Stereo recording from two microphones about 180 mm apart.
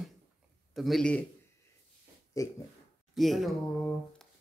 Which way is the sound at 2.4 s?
20° left (ahead or behind).